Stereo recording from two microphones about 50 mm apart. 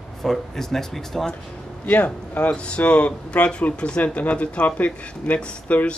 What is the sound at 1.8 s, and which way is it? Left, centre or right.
Speech, left.